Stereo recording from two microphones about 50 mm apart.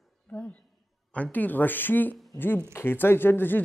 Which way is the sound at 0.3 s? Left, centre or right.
Centre.